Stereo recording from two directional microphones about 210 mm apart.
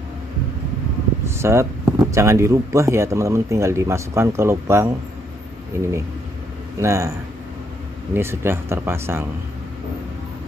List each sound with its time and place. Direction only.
1.2 s speech: 10° right (ahead or behind)